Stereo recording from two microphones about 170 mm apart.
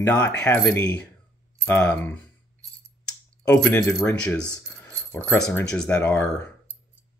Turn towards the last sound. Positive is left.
turn(degrees=10)  # may be behind; listen again after turning